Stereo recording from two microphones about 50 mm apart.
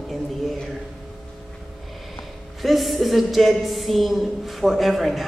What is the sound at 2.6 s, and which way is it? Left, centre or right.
A woman's voice, centre.